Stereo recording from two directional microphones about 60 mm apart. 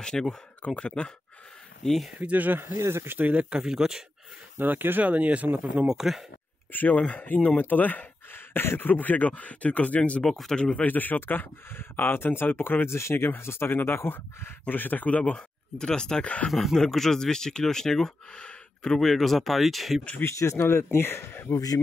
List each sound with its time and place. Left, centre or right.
0.0 s speech: centre
1.8 s speech: centre
2.1 s speech: right
2.6 s speech: right
3.1 s speech: right; by 4.0 s centre
4.6 s speech: right
5.9 s speech: centre
6.7 s speech: left
10.2 s a man's voice: centre
16.4 s speech: centre
18.9 s speech: centre
20.2 s speech: left
21.5 s speech: left